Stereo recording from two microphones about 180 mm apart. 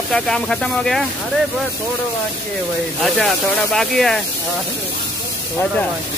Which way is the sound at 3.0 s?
Centre (ahead or behind).